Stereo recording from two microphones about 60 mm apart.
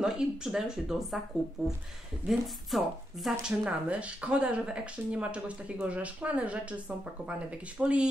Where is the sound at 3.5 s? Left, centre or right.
Centre.